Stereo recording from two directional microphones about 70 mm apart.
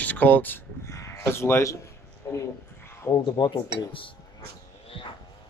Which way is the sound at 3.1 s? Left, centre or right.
Left.